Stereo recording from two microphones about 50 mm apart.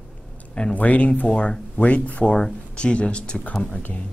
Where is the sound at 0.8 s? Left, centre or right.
Left.